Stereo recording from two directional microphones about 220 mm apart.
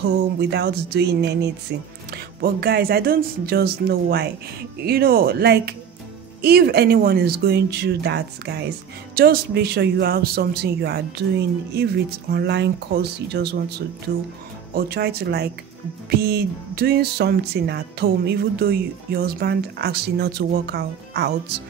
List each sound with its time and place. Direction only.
0.4 s speech: 50° right (ahead or behind)